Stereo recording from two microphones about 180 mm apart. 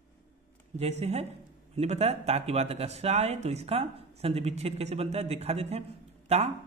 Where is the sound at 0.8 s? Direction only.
35° right (ahead or behind).